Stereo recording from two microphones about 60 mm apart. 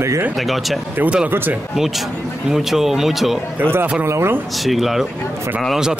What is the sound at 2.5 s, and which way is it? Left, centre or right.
Speech, centre.